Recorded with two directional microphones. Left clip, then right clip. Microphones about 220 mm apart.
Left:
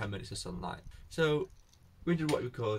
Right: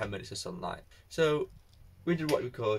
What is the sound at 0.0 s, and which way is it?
Speech, 10° left (ahead or behind).